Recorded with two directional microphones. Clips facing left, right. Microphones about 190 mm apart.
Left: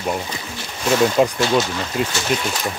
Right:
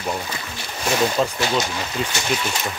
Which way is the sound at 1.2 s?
15° left (ahead or behind).